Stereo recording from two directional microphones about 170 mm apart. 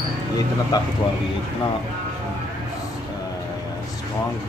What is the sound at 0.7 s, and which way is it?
Speech, 20° left (ahead or behind).